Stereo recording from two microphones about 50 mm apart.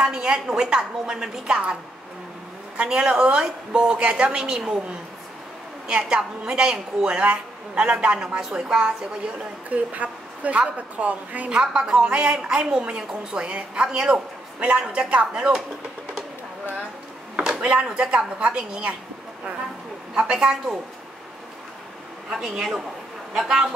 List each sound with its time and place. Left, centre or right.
0.0 s a woman's voice: centre
2.9 s a woman's voice: centre
5.9 s a woman's voice: right
9.7 s a woman's voice: right
11.5 s a woman's voice: centre
17.6 s a woman's voice: right
20.2 s a woman's voice: centre
22.3 s a woman's voice: centre